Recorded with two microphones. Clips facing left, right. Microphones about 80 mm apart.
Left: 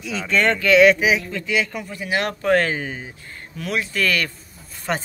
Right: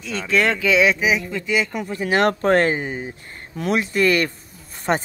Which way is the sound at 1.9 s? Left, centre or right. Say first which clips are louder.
Right 5 dB; right.